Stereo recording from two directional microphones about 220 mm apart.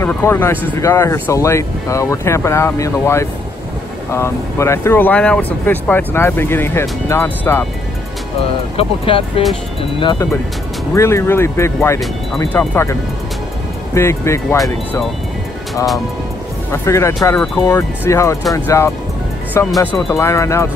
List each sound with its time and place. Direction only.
0.0 s speech: 10° left (ahead or behind)
8.7 s speech: 25° left (ahead or behind)
13.9 s speech: 10° left (ahead or behind)
16.7 s speech: 10° left (ahead or behind)